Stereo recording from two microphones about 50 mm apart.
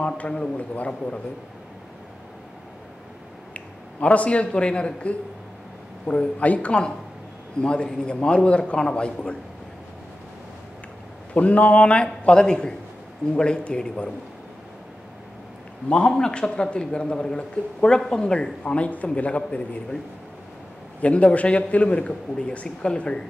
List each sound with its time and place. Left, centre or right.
0.6 s a man's voice: left
3.5 s a man's voice: left
11.3 s a man's voice: left
16.1 s a man's voice: centre
21.0 s a man's voice: left